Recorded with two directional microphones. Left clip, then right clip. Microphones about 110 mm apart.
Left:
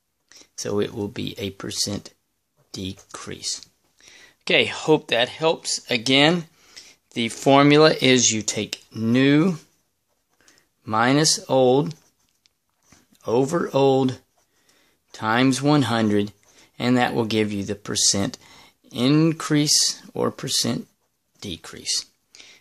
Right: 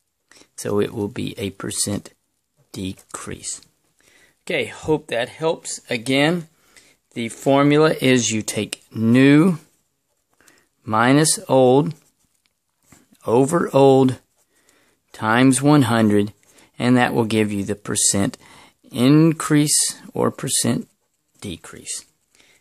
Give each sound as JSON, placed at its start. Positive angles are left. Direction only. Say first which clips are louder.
{"t": 0.3, "sound": "speech", "louder": "right 3 dB", "side_deg": -30}
{"t": 4.0, "sound": "speech", "louder": "left 8 dB", "side_deg": -15}
{"t": 5.4, "sound": "speech", "louder": "left 1 dB", "side_deg": -30}
{"t": 12.4, "sound": "a sound", "louder": "right 2 dB", "side_deg": -35}
{"t": 14.7, "sound": "speech", "louder": "even", "side_deg": -30}
{"t": 22.3, "sound": "a sound", "louder": "left 8 dB", "side_deg": -15}